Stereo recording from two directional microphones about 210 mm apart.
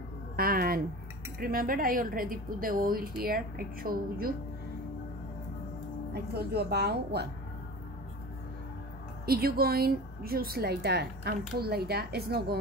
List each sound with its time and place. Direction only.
0.4 s a woman's voice: 45° right (ahead or behind)
6.1 s a woman's voice: 50° right (ahead or behind)
9.2 s a woman's voice: 45° right (ahead or behind)